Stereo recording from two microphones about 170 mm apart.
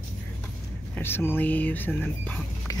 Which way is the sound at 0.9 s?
10° left (ahead or behind).